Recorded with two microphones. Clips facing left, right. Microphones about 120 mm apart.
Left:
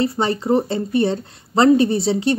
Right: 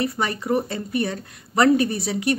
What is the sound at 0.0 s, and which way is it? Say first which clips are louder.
Speech: left 5 dB; 30° left (ahead or behind).